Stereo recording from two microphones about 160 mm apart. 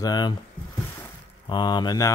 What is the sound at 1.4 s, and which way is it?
Speech, 30° left (ahead or behind).